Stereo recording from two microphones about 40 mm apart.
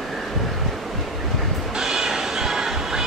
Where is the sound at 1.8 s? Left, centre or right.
Centre.